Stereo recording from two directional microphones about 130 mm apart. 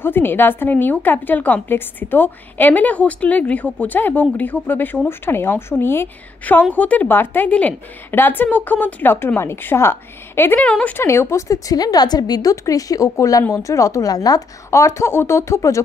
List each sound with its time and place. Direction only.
0.0 s a woman's voice: 15° left (ahead or behind)